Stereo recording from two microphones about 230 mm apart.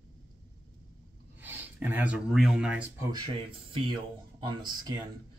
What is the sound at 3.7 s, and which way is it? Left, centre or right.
Speech, right.